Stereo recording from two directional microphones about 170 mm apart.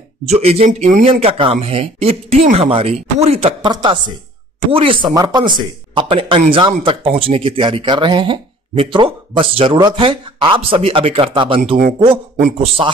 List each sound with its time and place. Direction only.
0.3 s speech: 40° right (ahead or behind)